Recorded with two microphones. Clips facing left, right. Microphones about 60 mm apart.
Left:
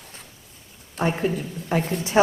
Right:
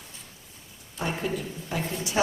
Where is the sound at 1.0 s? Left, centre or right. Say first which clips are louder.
Left 6 dB; left.